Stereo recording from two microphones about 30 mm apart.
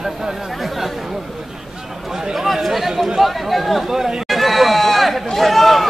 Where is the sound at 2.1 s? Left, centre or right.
Centre.